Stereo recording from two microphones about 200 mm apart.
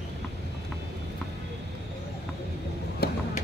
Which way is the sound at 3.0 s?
50° left (ahead or behind).